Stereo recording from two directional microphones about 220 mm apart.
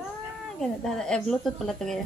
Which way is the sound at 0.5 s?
Centre (ahead or behind).